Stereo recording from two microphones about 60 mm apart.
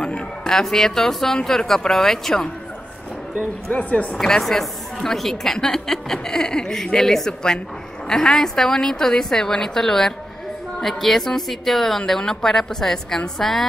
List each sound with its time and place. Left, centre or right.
0.0 s a woman's voice: centre
3.6 s speech: left
4.2 s a woman's voice: centre